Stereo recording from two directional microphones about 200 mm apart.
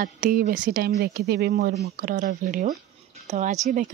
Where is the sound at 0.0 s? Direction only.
45° right (ahead or behind).